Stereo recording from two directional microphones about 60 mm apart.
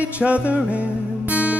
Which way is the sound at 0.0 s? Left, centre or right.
Right.